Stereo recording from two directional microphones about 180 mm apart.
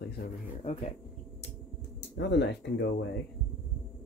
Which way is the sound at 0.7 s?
35° left (ahead or behind).